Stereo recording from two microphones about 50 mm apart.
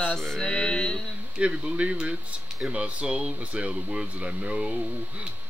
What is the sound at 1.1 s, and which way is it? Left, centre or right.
Speech, right.